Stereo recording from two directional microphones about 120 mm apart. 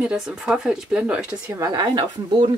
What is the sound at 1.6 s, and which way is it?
Speech, 35° right (ahead or behind).